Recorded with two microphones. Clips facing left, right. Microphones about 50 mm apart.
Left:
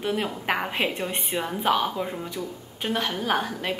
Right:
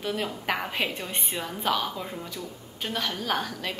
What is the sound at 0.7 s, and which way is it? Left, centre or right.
A woman's voice, left.